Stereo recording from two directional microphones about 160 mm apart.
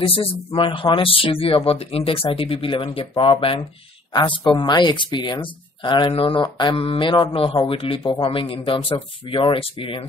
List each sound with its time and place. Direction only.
0.0 s speech: 35° left (ahead or behind)